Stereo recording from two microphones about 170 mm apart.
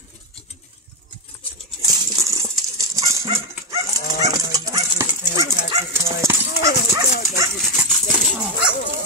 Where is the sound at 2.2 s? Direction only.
20° right (ahead or behind).